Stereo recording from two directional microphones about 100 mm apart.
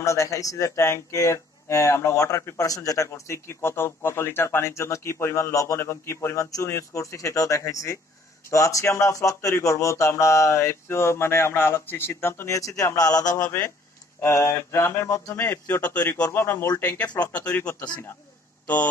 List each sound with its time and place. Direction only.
0.0 s speech: 30° left (ahead or behind)
14.2 s speech: 30° left (ahead or behind)
15.3 s speech: 20° left (ahead or behind)
17.7 s a man's voice: 45° left (ahead or behind)